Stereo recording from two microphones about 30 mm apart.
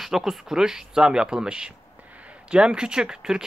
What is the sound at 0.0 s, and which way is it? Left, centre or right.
Speech, centre.